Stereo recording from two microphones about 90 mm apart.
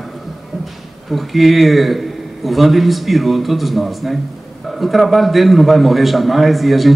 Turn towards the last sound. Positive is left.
turn(degrees=0)  # may be behind; listen again after turning